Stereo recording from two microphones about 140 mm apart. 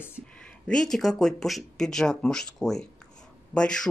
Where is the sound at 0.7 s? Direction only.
5° left (ahead or behind).